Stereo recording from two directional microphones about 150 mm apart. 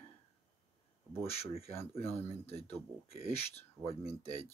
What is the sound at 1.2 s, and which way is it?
Speech, 40° left (ahead or behind).